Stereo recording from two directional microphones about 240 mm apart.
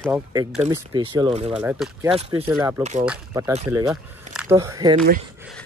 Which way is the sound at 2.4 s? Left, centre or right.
Centre.